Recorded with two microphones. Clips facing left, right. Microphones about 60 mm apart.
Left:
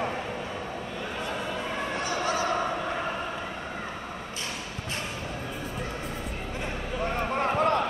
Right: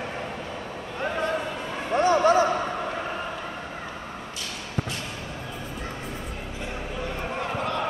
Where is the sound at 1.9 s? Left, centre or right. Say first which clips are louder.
Right 12 dB; right.